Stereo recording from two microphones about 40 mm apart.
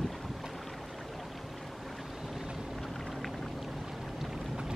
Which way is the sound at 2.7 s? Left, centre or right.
Centre.